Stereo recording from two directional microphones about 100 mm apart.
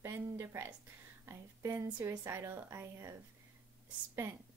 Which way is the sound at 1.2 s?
25° right (ahead or behind).